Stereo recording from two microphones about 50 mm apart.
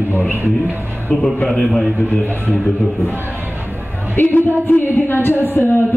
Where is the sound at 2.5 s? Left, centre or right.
Centre.